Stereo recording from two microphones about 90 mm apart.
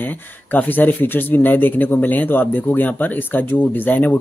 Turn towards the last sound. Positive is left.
turn(degrees=20)  # may be behind; listen again after turning